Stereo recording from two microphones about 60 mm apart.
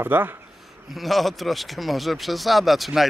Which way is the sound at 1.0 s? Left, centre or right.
Centre.